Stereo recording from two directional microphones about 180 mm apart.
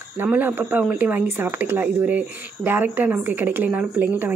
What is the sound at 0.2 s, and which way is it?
Speech, 10° right (ahead or behind).